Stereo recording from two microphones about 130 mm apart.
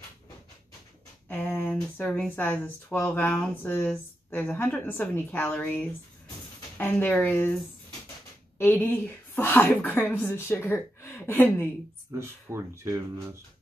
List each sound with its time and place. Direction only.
1.3 s speech: 15° left (ahead or behind)
8.5 s speech: 15° left (ahead or behind)
12.2 s speech: 20° right (ahead or behind)